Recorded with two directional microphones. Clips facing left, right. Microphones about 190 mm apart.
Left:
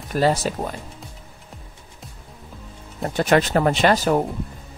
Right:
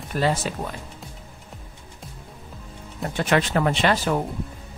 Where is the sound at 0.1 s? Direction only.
40° left (ahead or behind).